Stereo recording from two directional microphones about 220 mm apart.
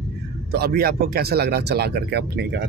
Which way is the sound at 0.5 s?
45° right (ahead or behind).